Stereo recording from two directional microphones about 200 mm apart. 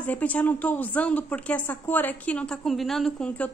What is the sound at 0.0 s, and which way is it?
Speech, 5° left (ahead or behind).